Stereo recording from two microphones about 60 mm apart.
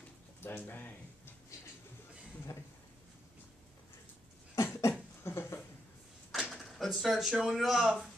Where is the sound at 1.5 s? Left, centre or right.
Left.